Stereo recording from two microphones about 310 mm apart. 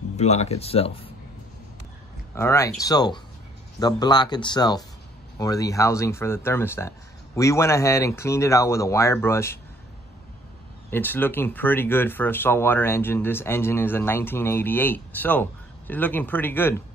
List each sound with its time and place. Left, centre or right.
0.2 s speech: left
2.3 s speech: centre
10.9 s speech: centre